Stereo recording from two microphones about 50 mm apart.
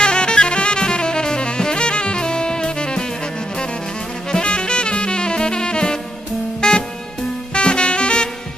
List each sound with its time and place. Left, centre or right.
0.0 s saxophone: centre
4.3 s drum kit: centre
7.5 s music: centre